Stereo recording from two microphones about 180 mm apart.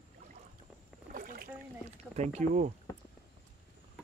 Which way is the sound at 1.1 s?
50° right (ahead or behind).